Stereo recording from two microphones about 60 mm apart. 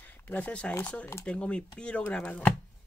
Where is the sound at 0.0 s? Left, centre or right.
Left.